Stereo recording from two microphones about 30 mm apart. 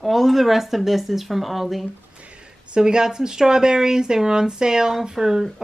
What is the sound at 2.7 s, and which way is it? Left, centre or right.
A woman's voice, right.